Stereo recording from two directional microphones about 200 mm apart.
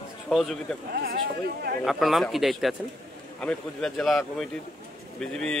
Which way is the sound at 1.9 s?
Centre (ahead or behind).